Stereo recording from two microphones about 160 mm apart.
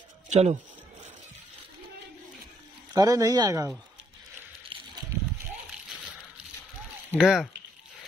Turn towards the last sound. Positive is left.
turn(degrees=-5)  # may be behind; listen again after turning